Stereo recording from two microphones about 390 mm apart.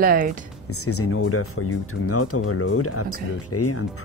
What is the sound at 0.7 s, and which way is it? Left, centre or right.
Speech, left.